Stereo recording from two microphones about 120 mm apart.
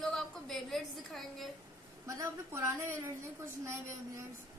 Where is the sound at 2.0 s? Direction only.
25° right (ahead or behind).